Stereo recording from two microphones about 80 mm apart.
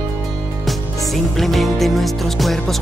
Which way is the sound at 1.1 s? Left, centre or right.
Centre.